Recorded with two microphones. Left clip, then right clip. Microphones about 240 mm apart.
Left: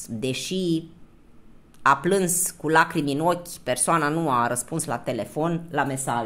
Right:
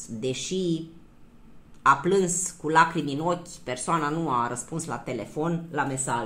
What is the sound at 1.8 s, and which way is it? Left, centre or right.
Speech, left.